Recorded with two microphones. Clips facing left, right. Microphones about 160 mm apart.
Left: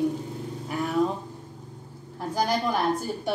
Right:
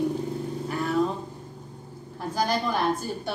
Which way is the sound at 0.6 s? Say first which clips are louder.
Even; 15° left (ahead or behind).